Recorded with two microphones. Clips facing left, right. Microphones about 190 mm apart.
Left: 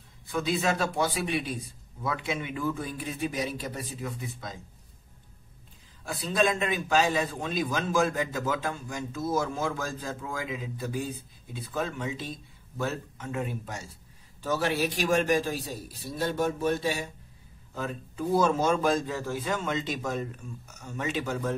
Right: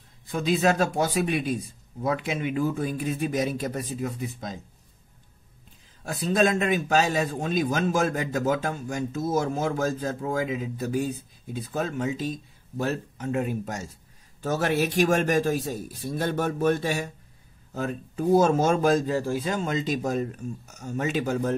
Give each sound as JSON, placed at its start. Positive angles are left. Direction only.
{"t": 0.3, "sound": "a man's voice", "side_deg": -40}
{"t": 6.0, "sound": "a man's voice", "side_deg": -45}